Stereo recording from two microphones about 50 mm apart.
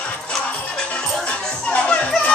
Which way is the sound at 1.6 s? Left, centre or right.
Left.